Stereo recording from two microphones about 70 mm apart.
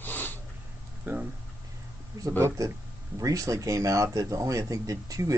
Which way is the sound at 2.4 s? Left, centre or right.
Right.